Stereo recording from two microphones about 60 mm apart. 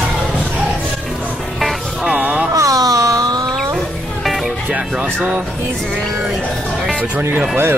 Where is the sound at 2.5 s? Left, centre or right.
Right.